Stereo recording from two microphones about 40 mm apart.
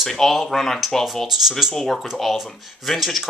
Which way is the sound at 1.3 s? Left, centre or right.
Centre.